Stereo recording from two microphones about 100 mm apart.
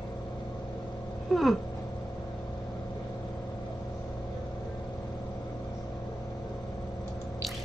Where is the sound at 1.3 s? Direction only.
5° right (ahead or behind).